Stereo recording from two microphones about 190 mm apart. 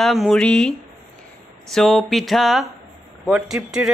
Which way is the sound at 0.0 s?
Centre (ahead or behind).